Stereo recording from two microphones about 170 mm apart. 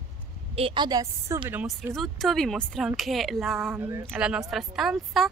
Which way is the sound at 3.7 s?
15° right (ahead or behind).